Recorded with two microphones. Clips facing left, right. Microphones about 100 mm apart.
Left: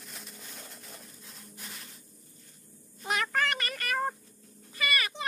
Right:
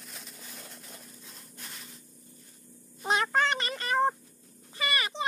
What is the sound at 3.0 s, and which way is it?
Cat, 30° right (ahead or behind).